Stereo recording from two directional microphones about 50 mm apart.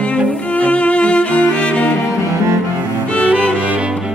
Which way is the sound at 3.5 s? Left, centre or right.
Right.